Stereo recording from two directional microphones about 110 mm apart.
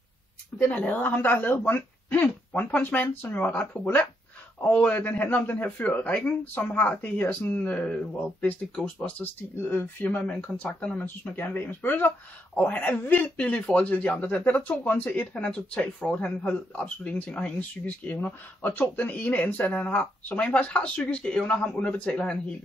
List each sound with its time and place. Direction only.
0.6 s speech: 15° left (ahead or behind)